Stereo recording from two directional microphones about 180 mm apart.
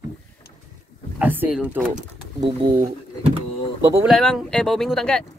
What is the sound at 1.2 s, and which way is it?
Speech, 10° right (ahead or behind).